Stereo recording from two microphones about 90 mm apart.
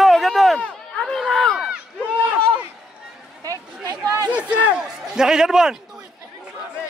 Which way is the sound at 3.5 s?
45° right (ahead or behind).